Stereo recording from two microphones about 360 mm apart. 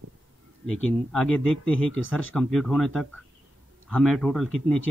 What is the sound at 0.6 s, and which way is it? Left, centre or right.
Speech, left.